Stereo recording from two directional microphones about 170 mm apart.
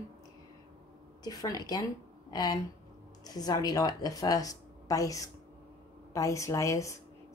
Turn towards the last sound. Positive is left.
turn(degrees=20)  # may be behind; listen again after turning